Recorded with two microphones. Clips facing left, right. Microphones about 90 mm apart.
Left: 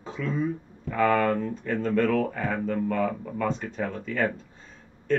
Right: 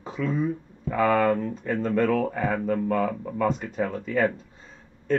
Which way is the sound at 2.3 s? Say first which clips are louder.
Right 3 dB; 5° right (ahead or behind).